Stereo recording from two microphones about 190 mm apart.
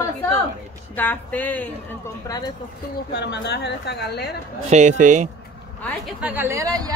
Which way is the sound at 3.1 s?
65° left (ahead or behind).